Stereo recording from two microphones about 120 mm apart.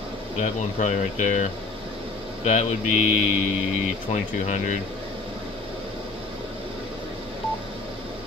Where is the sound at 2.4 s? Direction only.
65° left (ahead or behind).